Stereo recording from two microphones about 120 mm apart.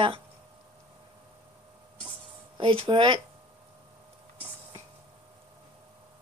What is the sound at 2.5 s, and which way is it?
Speech, 45° right (ahead or behind).